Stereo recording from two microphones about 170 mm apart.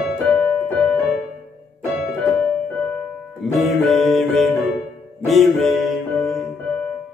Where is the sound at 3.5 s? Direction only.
Centre (ahead or behind).